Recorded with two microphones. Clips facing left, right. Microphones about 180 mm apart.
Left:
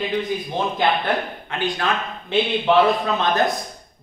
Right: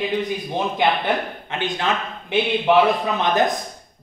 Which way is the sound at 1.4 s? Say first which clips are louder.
Even; 20° right (ahead or behind).